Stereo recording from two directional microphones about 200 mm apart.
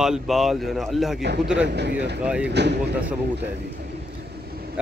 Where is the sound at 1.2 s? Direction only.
55° right (ahead or behind).